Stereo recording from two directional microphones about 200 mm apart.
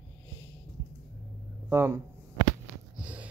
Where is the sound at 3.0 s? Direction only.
5° right (ahead or behind).